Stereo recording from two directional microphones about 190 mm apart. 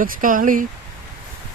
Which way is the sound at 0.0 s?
45° right (ahead or behind).